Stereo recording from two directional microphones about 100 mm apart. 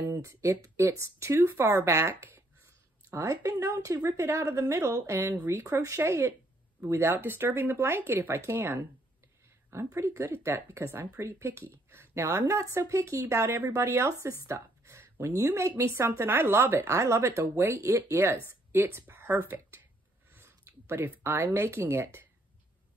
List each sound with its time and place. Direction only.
0.1 s a woman's voice: 30° right (ahead or behind)
5.7 s a woman's voice: 35° right (ahead or behind)
20.3 s a sound: 25° right (ahead or behind)
21.2 s a woman's voice: 20° right (ahead or behind)